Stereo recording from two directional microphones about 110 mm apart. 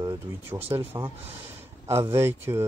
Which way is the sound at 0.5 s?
20° right (ahead or behind).